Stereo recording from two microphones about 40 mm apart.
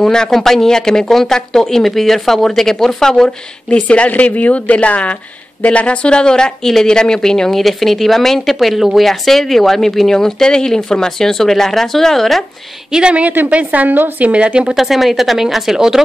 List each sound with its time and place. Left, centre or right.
0.0 s speech: centre
3.7 s a woman's voice: left; by 12.4 s centre
12.9 s speech: right
13.5 s a woman's voice: right
14.2 s speech: right
14.7 s speech: centre